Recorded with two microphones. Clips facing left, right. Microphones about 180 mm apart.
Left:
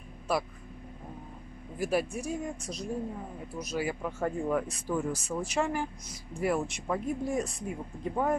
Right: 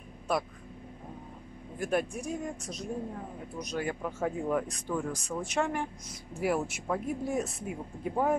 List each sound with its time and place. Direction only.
0.3 s speech: centre (ahead or behind)
1.8 s speech: 5° left (ahead or behind)